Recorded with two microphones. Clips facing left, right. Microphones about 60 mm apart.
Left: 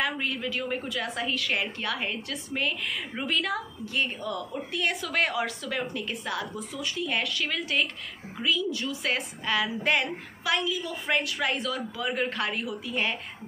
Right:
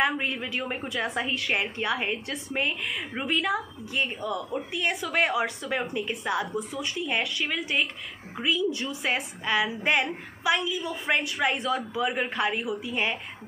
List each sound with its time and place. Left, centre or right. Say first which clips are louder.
0.0 s a woman's voice: right 3 dB; right
3.2 s a woman's voice: right 2 dB; centre; by 6.9 s right
7.4 s a woman's voice: even; centre
8.4 s a woman's voice: right 2 dB; right
12.0 s a woman's voice: even; centre